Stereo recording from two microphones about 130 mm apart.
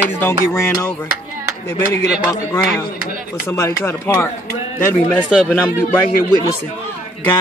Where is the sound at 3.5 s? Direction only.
20° left (ahead or behind).